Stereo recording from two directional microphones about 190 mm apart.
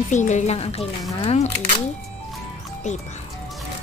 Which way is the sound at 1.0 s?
20° left (ahead or behind).